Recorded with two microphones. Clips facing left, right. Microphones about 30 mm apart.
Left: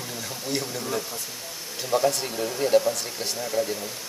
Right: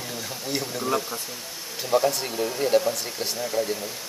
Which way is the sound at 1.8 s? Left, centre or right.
Centre.